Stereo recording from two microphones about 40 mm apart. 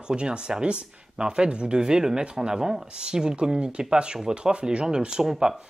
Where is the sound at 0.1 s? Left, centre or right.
Right.